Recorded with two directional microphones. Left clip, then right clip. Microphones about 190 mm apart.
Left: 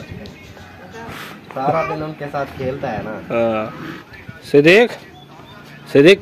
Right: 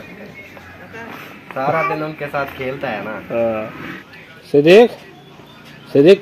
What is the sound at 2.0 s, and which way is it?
Speech, 10° left (ahead or behind).